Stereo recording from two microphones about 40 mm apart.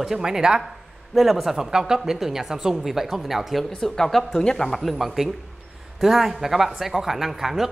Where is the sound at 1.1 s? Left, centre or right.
Centre.